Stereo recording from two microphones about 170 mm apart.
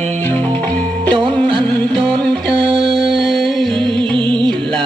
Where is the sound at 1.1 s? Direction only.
25° right (ahead or behind).